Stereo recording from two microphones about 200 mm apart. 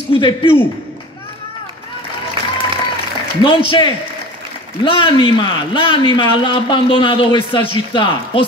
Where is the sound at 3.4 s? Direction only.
25° left (ahead or behind).